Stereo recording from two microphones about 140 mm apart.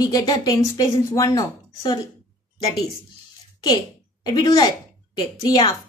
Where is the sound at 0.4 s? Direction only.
25° left (ahead or behind).